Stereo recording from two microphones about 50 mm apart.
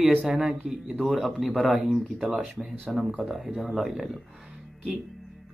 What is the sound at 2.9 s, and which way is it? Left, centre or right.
Speech, centre.